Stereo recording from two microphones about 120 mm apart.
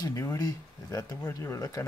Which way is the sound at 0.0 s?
25° left (ahead or behind).